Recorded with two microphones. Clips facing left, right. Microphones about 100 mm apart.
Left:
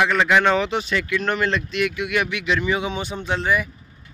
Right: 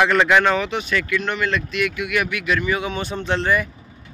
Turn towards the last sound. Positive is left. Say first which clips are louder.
# right 2 dB
turn(degrees=10)  # may be behind; listen again after turning